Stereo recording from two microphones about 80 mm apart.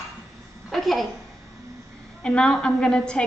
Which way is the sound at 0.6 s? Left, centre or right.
Centre.